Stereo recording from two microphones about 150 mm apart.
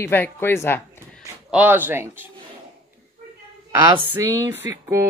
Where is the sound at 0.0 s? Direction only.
15° left (ahead or behind).